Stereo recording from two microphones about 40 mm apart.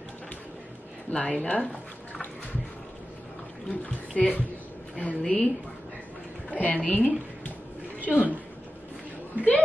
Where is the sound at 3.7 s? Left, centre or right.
Left.